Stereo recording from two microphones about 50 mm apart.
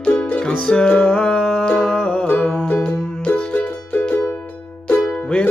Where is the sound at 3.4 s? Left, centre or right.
Left.